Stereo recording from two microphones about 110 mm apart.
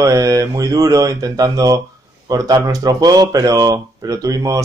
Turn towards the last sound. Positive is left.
turn(degrees=-30)  # may be behind; listen again after turning